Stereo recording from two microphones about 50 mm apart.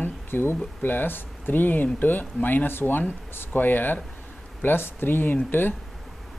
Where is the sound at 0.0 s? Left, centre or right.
Left.